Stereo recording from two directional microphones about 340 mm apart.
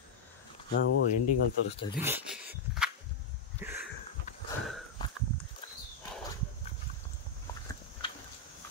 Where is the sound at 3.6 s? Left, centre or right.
Centre.